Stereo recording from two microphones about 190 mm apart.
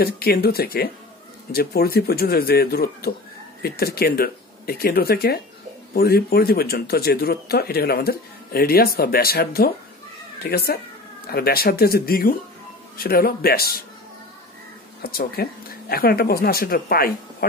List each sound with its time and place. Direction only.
0.0 s speech: 55° left (ahead or behind)
15.0 s speech: 55° left (ahead or behind)